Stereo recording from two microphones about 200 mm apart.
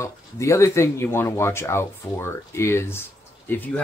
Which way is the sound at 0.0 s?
15° left (ahead or behind).